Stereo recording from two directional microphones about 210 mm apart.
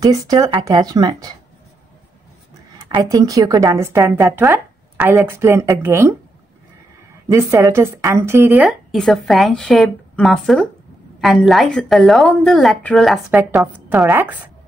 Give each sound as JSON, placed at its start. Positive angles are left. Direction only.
{"t": 0.0, "sound": "speech", "side_deg": -15}
{"t": 3.0, "sound": "speech", "side_deg": -15}
{"t": 7.2, "sound": "speech", "side_deg": -15}